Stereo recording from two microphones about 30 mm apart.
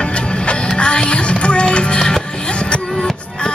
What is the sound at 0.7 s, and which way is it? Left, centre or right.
Music, left.